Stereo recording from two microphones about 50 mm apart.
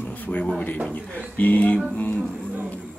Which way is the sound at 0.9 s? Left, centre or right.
Left.